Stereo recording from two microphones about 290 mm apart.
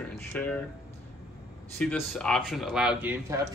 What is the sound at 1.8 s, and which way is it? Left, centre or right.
Speech, centre.